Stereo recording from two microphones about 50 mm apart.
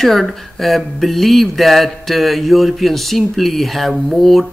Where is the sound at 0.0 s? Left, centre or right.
Centre.